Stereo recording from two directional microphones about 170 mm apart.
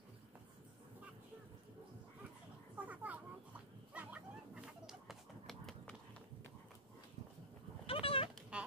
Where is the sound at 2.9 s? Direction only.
10° right (ahead or behind).